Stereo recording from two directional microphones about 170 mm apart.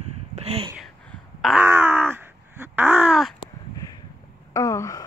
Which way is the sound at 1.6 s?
15° right (ahead or behind).